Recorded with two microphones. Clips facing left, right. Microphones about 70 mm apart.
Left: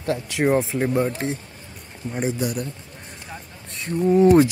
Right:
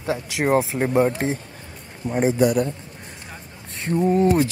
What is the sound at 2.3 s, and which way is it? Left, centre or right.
Speech, right.